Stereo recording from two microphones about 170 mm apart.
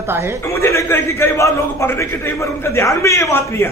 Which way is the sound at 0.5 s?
15° left (ahead or behind).